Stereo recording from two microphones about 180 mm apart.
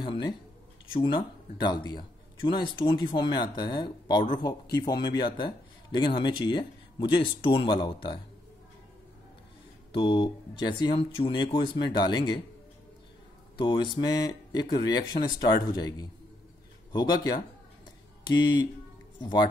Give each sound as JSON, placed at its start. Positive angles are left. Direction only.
{"t": 0.0, "sound": "speech", "side_deg": 25}
{"t": 9.9, "sound": "speech", "side_deg": 25}
{"t": 13.6, "sound": "speech", "side_deg": 25}